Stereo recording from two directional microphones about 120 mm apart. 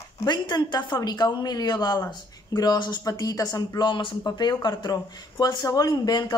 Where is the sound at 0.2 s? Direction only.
35° left (ahead or behind).